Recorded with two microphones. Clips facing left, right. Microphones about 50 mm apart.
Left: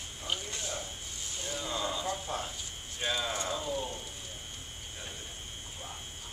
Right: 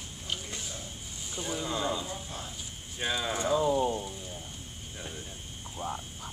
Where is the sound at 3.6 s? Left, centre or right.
Right.